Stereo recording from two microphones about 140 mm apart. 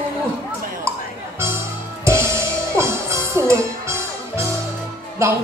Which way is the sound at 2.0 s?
20° right (ahead or behind).